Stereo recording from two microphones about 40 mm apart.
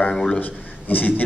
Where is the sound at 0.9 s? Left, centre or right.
Left.